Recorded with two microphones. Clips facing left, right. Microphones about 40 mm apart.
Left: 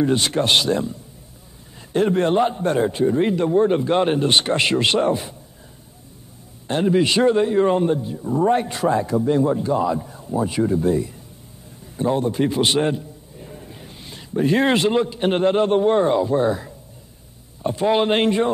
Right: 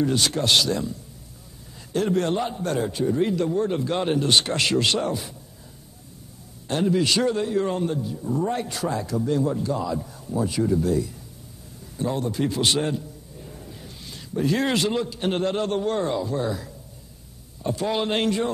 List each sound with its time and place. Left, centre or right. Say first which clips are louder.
0.0 s a man's voice: left 4 dB; left
6.7 s a man's voice: left 4 dB; left